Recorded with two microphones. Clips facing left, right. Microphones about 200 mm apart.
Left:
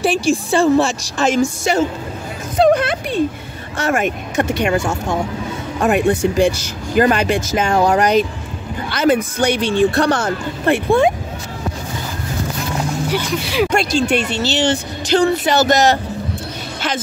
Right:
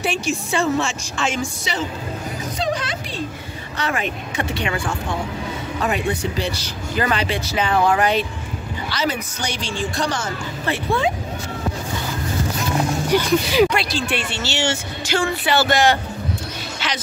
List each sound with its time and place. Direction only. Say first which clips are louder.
0.0 s a woman's voice: left 7 dB; 35° left (ahead or behind)
2.5 s a sound: left 12 dB; 55° left (ahead or behind)
3.7 s speech: left 6 dB; 45° left (ahead or behind)
13.1 s speech: right 3 dB; centre (ahead or behind)
13.7 s a woman's voice: left 6 dB; 45° left (ahead or behind)